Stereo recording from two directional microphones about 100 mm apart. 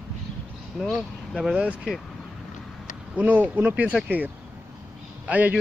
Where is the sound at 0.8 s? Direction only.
Centre (ahead or behind).